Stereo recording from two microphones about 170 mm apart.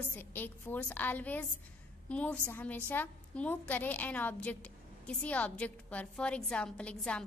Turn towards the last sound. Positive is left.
turn(degrees=5)  # may be behind; listen again after turning